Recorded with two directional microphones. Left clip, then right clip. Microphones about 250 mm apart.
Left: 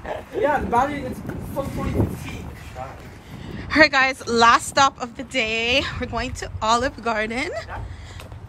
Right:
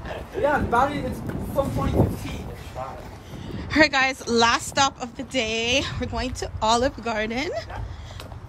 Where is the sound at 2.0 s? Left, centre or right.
Right.